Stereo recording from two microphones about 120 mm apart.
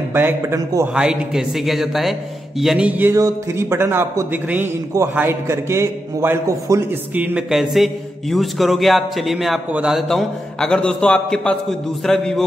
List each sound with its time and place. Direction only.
0.1 s speech: 15° right (ahead or behind)
0.9 s a man's voice: 5° right (ahead or behind)
3.2 s a man's voice: 30° right (ahead or behind)
7.2 s a man's voice: 10° right (ahead or behind)